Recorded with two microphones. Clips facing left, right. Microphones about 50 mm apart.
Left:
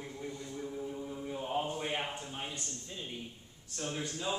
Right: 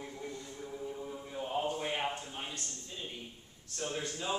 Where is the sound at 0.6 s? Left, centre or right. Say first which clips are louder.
Even; centre.